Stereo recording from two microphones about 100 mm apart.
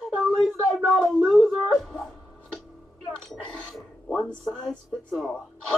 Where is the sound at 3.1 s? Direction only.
5° left (ahead or behind).